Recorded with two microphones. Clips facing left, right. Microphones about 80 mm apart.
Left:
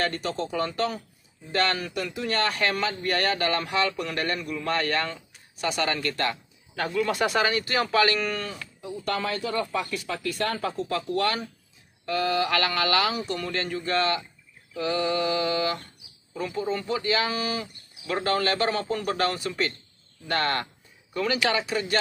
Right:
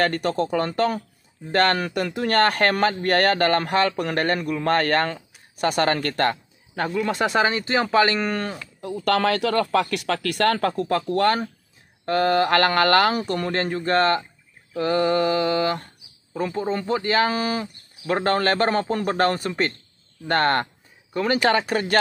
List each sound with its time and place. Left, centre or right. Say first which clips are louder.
0.0 s speech: right 6 dB; right
8.8 s speech: right 8 dB; right